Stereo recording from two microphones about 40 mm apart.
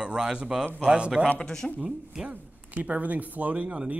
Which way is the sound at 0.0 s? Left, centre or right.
Centre.